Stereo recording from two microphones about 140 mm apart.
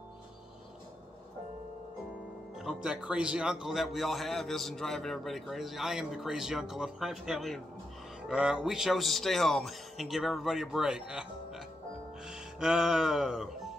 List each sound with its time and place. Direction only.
2.6 s a man's voice: 5° right (ahead or behind)
12.3 s music: 5° right (ahead or behind)